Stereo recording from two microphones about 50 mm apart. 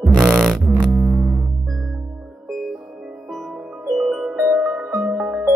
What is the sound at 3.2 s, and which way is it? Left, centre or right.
Music, centre.